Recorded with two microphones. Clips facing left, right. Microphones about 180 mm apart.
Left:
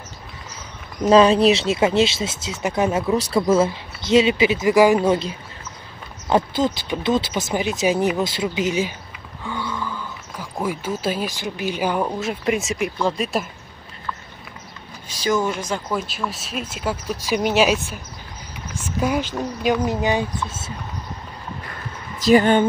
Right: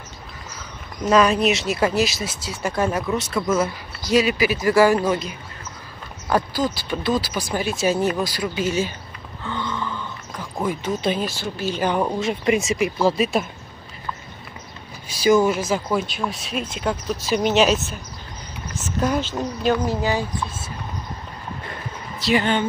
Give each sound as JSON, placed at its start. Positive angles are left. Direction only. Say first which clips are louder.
{"t": 1.0, "sound": "speech", "louder": "left 4 dB", "side_deg": 30}
{"t": 9.4, "sound": "a sound", "louder": "even", "side_deg": 10}
{"t": 12.0, "sound": "speech", "louder": "right 1 dB", "side_deg": -5}
{"t": 15.0, "sound": "speech", "louder": "right 5 dB", "side_deg": -10}
{"t": 22.2, "sound": "speech", "louder": "left 6 dB", "side_deg": 45}